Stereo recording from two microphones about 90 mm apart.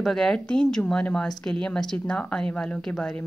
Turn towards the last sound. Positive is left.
turn(degrees=5)  # may be behind; listen again after turning